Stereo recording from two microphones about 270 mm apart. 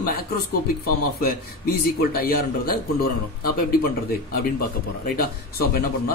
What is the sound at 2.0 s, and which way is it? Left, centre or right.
A man's voice, left.